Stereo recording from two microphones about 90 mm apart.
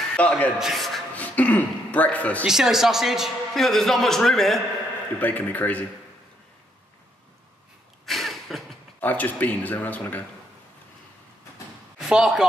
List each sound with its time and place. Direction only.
0.1 s a man's voice: 15° left (ahead or behind)
0.6 s a man's voice: centre (ahead or behind)
1.1 s a man's voice: 15° left (ahead or behind)
2.4 s a man's voice: 5° right (ahead or behind)
5.2 s speech: 20° left (ahead or behind)
8.0 s a sound: centre (ahead or behind)
9.0 s speech: 20° left (ahead or behind)
12.0 s speech: 5° right (ahead or behind)